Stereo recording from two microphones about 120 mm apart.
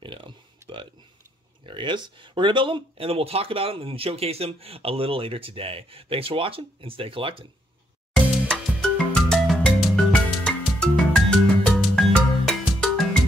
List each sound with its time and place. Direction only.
0.0 s a sound: 40° right (ahead or behind)
1.7 s speech: 40° right (ahead or behind)
8.1 s music: 5° left (ahead or behind)